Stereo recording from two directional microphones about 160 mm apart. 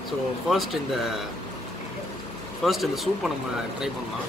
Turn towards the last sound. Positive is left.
turn(degrees=0)  # may be behind; listen again after turning